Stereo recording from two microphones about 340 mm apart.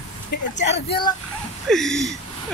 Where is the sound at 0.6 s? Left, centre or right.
Left.